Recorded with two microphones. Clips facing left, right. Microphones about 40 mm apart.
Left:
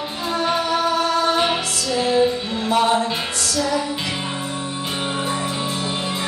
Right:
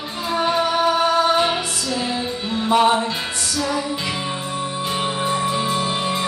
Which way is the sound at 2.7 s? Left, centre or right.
Centre.